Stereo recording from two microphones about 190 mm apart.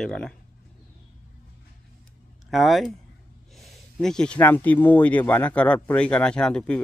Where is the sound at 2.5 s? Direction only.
Centre (ahead or behind).